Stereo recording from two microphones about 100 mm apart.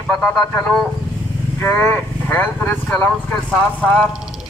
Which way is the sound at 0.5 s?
10° left (ahead or behind).